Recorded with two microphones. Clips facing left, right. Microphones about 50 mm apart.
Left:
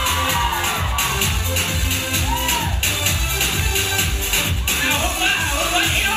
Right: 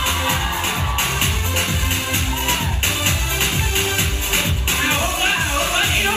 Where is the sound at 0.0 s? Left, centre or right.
Right.